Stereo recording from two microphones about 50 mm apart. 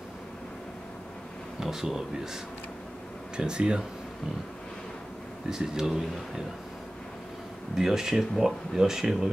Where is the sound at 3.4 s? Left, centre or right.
Centre.